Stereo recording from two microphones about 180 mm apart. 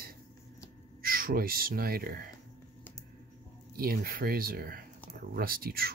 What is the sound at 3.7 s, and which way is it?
Speech, 55° right (ahead or behind).